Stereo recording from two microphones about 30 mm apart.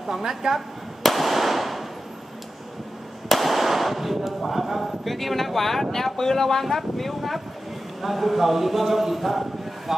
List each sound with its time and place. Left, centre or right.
0.1 s a woman's voice: centre
1.0 s firecracker: centre
3.3 s firecracker: centre
5.0 s speech: centre
8.0 s speech: centre